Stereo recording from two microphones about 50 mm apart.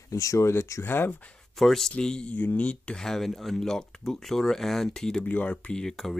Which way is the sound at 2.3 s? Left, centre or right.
Left.